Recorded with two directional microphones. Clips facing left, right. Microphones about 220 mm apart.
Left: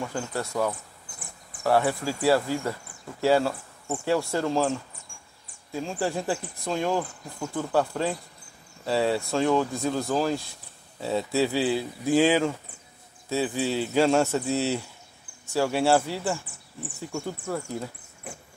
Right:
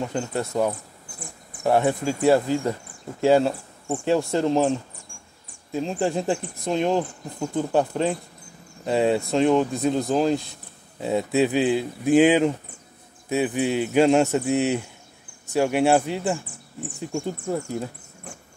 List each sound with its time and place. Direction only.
0.0 s speech: 20° right (ahead or behind)
5.1 s a sound: 40° right (ahead or behind)
5.7 s speech: 20° right (ahead or behind)